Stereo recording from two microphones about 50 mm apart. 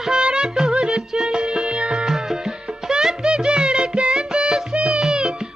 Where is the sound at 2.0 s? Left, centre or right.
Centre.